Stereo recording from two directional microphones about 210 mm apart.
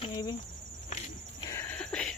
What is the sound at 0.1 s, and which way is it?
Cricket, 20° left (ahead or behind).